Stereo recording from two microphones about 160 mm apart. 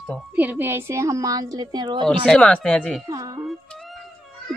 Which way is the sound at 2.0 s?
5° left (ahead or behind).